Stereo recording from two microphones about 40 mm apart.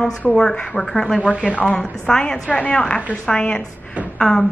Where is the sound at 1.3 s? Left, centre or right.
Left.